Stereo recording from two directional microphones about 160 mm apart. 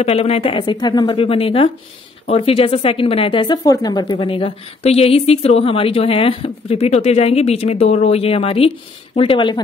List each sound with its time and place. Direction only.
0.0 s speech: 40° left (ahead or behind)